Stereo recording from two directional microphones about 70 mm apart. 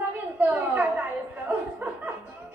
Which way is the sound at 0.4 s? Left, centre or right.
Right.